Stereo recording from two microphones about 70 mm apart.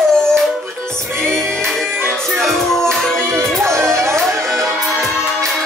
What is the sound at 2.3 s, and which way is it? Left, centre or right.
Music, centre.